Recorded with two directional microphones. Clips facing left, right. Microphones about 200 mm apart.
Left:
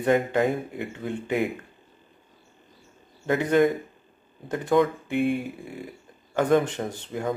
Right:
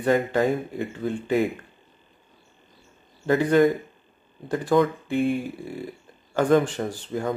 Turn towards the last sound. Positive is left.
turn(degrees=20)  # may be behind; listen again after turning